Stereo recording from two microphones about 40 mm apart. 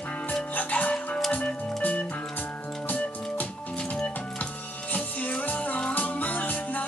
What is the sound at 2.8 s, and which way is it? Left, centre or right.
Music, left.